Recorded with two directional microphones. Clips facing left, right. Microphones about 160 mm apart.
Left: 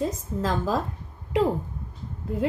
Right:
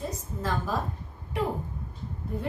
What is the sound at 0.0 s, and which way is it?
A woman's voice, 90° left.